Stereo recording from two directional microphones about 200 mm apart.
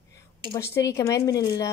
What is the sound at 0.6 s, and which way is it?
Speech, 15° left (ahead or behind).